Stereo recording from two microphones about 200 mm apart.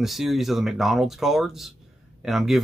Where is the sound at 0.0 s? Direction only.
Centre (ahead or behind).